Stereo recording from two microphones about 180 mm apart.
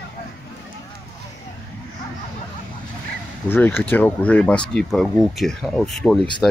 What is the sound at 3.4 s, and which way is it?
Speech, 10° left (ahead or behind).